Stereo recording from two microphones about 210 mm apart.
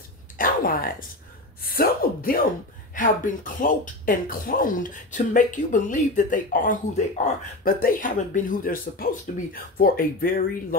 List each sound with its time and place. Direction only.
0.4 s speech: 40° left (ahead or behind)